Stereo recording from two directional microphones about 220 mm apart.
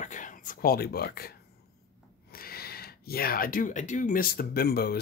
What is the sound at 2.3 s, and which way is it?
Speech, 45° left (ahead or behind).